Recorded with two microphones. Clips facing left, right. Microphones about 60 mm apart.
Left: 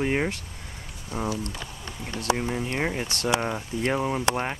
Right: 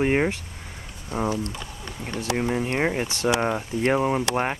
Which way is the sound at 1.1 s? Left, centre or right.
Right.